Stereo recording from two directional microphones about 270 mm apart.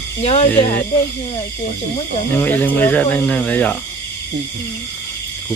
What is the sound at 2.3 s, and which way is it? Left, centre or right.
Speech, centre.